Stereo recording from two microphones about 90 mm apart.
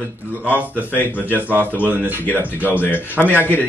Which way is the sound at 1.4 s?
20° right (ahead or behind).